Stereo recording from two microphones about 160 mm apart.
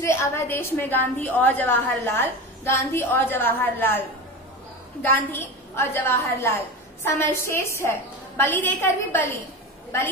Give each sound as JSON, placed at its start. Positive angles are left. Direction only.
{"t": 0.0, "sound": "a woman's voice", "side_deg": 20}
{"t": 5.1, "sound": "a woman's voice", "side_deg": 15}